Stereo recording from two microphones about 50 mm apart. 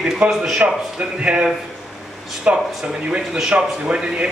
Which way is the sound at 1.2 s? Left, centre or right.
Right.